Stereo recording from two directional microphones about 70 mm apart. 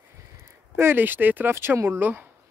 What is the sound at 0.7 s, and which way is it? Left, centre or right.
Speech, right.